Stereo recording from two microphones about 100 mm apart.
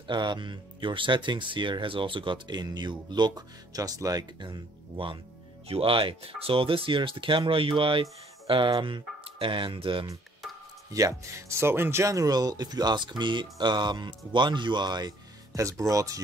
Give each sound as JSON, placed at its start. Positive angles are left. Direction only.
{"t": 0.0, "sound": "speech", "side_deg": -50}
{"t": 4.4, "sound": "speech", "side_deg": -55}
{"t": 5.7, "sound": "speech", "side_deg": -70}
{"t": 10.4, "sound": "a sound", "side_deg": 0}
{"t": 10.9, "sound": "speech", "side_deg": -35}